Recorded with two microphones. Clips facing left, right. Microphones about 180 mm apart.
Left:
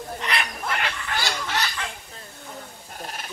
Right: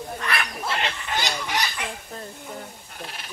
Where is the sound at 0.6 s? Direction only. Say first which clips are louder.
Right 1 dB; 25° right (ahead or behind).